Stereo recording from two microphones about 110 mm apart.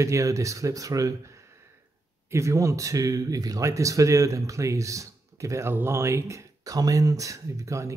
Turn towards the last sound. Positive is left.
turn(degrees=-30)  # may be behind; listen again after turning